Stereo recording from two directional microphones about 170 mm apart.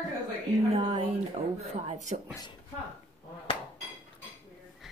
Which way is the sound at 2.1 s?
40° right (ahead or behind).